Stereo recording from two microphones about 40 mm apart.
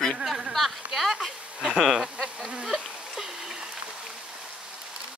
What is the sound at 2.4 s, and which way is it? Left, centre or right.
Insect, right.